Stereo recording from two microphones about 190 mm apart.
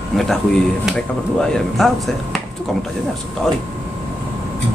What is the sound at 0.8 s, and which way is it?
Speech, 5° left (ahead or behind).